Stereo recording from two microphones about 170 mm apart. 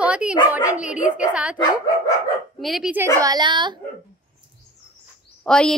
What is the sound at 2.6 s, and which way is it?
Speech, 5° right (ahead or behind).